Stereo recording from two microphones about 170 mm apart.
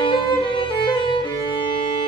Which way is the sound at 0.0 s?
30° left (ahead or behind).